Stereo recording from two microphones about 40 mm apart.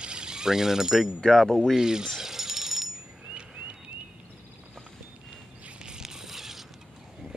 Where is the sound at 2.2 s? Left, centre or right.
Centre.